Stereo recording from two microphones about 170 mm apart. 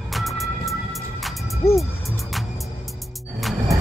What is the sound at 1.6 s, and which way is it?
Speech, 15° left (ahead or behind).